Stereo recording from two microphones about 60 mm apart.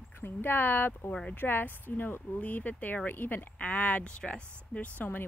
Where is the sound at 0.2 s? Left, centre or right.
Left.